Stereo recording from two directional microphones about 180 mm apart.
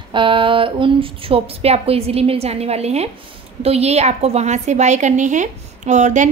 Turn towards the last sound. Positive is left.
turn(degrees=-40)  # may be behind; listen again after turning